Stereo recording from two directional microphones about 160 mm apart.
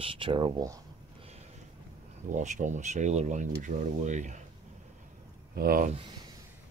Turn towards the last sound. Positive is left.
turn(degrees=-70)  # may be behind; listen again after turning